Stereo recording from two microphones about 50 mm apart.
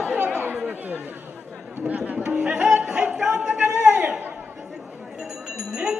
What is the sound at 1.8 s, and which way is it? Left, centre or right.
Tabla, right.